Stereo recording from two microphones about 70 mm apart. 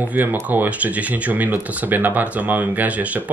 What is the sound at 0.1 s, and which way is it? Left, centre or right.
Speech, right.